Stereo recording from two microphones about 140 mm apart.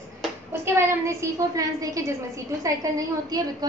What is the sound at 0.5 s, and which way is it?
A woman's voice, 15° right (ahead or behind).